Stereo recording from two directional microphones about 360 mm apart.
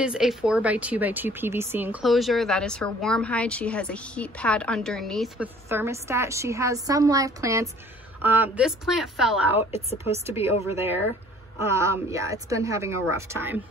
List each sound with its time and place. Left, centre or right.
0.0 s speech: centre
9.6 s speech: centre
10.1 s a woman's voice: centre